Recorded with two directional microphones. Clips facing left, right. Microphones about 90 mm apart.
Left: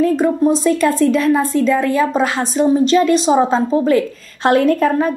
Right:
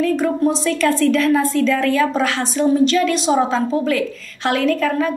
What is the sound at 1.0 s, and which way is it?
A woman's voice, 30° left (ahead or behind).